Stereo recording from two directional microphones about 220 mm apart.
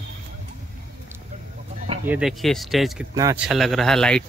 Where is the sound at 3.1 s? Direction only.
15° right (ahead or behind).